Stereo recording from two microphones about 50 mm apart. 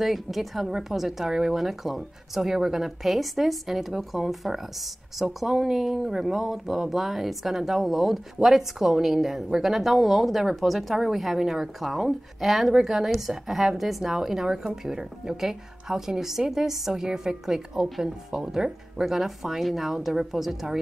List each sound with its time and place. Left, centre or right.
0.0 s a woman's voice: centre